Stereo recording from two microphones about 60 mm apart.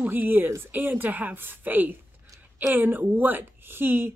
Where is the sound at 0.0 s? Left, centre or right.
Right.